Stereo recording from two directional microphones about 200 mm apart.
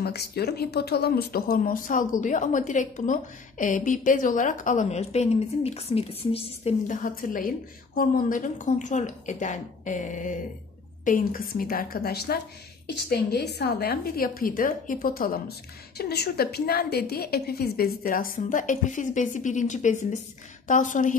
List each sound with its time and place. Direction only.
0.0 s a woman's voice: 55° left (ahead or behind)